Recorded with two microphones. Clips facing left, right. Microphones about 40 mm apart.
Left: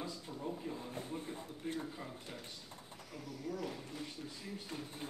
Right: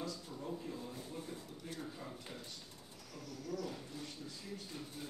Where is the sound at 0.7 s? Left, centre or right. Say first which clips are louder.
Left 3 dB; left.